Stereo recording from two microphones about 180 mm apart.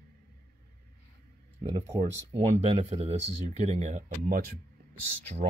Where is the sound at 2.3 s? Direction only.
35° right (ahead or behind).